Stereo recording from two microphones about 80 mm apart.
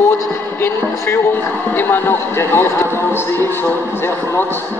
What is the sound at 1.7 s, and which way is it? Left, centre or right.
A man's voice, left.